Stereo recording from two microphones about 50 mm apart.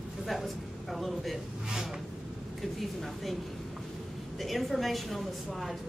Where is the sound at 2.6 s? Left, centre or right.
Centre.